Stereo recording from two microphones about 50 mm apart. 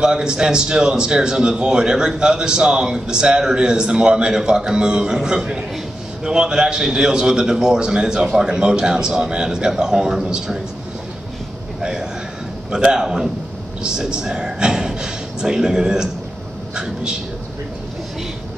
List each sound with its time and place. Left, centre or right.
0.0 s a man's voice: centre
11.8 s a sound: centre
12.7 s a man's voice: centre